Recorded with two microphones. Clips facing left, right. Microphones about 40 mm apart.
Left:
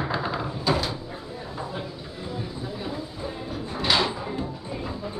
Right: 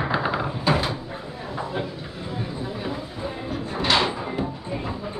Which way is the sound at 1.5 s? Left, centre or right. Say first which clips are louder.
Right 6 dB; right.